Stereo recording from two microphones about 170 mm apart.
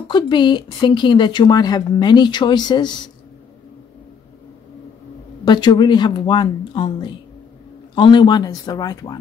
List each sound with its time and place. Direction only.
0.1 s speech: 25° left (ahead or behind)
5.4 s speech: 25° left (ahead or behind)